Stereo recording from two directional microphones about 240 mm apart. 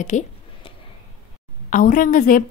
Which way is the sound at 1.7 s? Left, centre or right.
Left.